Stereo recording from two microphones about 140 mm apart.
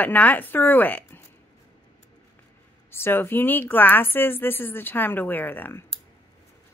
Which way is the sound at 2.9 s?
15° left (ahead or behind).